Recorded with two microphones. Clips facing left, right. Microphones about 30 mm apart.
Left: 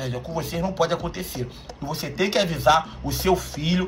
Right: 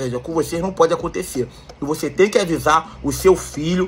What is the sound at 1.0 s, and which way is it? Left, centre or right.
A man's voice, left.